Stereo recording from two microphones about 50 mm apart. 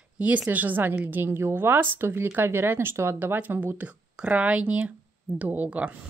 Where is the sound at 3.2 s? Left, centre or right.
Right.